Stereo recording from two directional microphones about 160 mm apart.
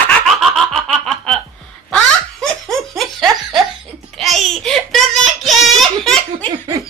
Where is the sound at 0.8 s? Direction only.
5° left (ahead or behind).